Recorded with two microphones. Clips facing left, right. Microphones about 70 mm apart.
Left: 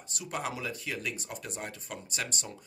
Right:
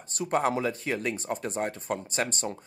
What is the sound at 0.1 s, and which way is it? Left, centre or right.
Speech, right.